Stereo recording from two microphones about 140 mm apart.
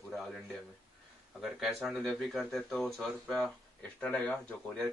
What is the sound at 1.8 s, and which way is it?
Speech, centre (ahead or behind).